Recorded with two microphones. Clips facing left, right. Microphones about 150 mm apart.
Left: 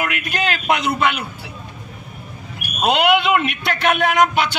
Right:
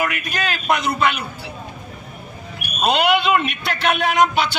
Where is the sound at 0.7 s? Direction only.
15° left (ahead or behind).